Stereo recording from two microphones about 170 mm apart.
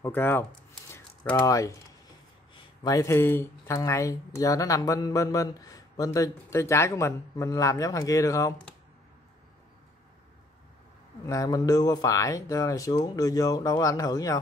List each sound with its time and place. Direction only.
0.0 s speech: 10° left (ahead or behind)
11.2 s speech: 20° left (ahead or behind)